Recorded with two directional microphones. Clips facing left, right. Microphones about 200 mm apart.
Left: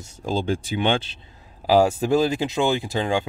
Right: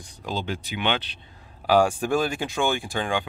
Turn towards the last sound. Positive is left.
turn(degrees=25)  # may be behind; listen again after turning